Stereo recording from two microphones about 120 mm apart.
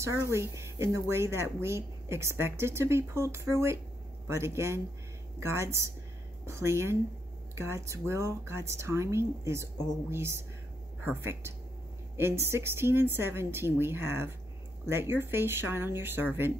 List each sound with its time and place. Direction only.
0.0 s speech: 25° right (ahead or behind)